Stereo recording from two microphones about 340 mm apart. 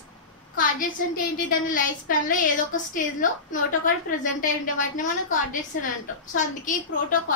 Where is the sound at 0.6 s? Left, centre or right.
Left.